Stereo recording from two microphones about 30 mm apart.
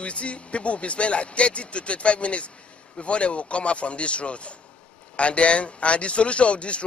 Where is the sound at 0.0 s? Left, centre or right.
Left.